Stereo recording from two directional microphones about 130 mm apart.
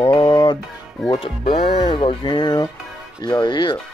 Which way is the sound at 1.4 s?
55° left (ahead or behind).